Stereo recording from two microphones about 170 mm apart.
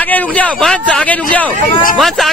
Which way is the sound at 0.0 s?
10° left (ahead or behind).